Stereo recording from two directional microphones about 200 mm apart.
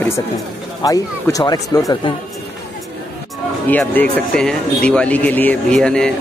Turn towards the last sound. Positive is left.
turn(degrees=5)  # may be behind; listen again after turning